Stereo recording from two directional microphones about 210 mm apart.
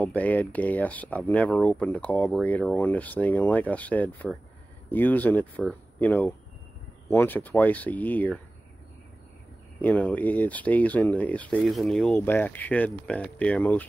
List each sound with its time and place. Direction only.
0.0 s speech: 5° left (ahead or behind)
9.8 s speech: 5° left (ahead or behind)